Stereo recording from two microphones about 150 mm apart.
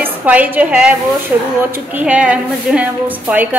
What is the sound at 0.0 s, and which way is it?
A woman's voice, 10° right (ahead or behind).